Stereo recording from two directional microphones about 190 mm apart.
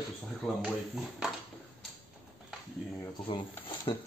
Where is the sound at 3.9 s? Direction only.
25° left (ahead or behind).